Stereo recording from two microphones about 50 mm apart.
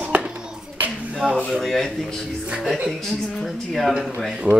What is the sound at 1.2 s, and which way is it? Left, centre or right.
Speech, centre.